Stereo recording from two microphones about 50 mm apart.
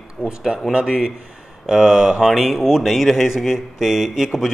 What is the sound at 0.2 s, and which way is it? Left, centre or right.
Speech, centre.